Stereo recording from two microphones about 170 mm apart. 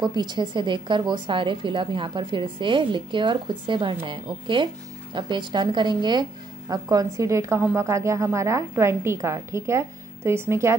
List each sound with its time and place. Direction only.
0.0 s a woman's voice: 25° right (ahead or behind)